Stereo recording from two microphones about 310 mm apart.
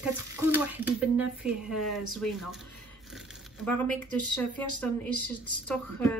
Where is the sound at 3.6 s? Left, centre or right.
Centre.